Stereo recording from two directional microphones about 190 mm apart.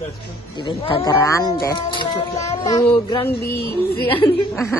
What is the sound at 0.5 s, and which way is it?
Speech, 25° left (ahead or behind).